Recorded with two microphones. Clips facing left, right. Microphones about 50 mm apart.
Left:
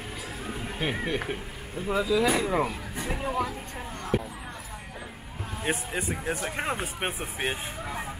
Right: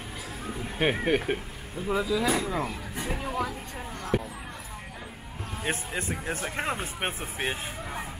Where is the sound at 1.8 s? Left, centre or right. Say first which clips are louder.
Left 2 dB; centre.